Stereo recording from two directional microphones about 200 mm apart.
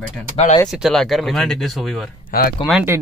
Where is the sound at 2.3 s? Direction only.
50° left (ahead or behind).